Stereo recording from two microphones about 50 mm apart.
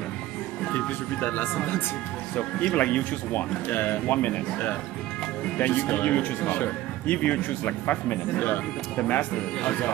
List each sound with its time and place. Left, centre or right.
0.7 s speech: left
2.3 s speech: left
5.6 s speech: left